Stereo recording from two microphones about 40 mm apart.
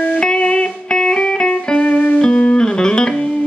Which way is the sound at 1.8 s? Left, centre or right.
Left.